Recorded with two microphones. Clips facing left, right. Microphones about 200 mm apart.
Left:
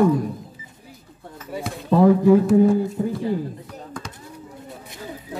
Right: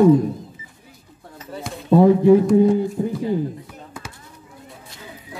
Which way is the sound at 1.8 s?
20° right (ahead or behind).